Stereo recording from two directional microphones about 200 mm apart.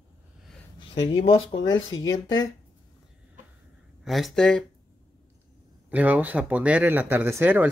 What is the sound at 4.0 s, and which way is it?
Speech, centre (ahead or behind).